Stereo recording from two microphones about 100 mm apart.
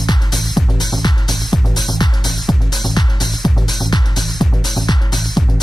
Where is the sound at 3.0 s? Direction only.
45° left (ahead or behind).